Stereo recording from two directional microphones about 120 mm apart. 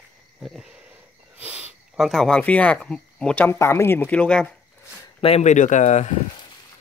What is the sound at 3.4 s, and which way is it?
Speech, 25° left (ahead or behind).